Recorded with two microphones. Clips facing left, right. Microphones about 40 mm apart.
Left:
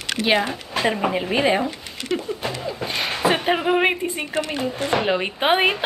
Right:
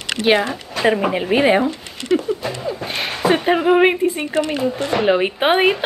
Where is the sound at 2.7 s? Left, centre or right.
Centre.